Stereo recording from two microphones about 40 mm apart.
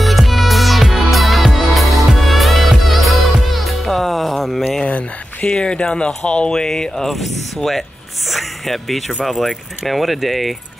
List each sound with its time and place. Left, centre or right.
0.0 s music: centre
4.8 s speech: left
7.1 s speech: centre